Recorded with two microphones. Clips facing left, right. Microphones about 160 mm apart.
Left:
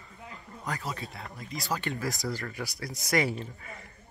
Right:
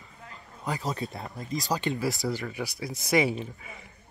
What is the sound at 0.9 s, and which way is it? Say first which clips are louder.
Speech: right 5 dB; 40° right (ahead or behind).